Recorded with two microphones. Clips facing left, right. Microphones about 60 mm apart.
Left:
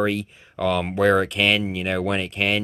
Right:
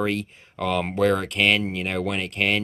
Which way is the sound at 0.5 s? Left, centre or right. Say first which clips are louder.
Left 2 dB; centre.